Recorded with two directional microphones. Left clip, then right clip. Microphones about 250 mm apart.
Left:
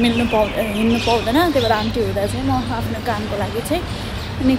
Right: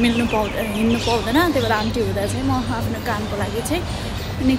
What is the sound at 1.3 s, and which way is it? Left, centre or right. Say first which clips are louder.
A woman's voice: left 1 dB; centre.